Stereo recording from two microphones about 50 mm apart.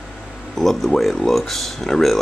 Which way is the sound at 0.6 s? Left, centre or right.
Centre.